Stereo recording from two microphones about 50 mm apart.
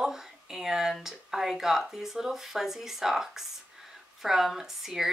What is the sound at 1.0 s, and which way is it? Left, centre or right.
Speech, centre.